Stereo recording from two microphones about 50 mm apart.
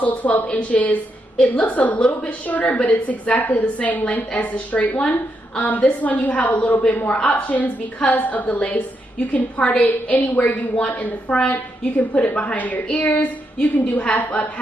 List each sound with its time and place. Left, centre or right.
0.0 s a woman's voice: left